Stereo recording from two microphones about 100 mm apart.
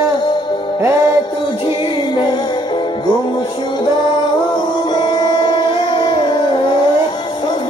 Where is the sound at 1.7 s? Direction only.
50° left (ahead or behind).